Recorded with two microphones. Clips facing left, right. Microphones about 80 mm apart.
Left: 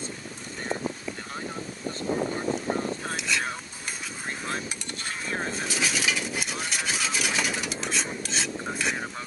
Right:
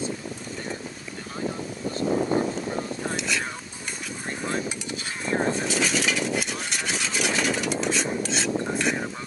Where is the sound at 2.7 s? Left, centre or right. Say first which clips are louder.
Left 2 dB; left.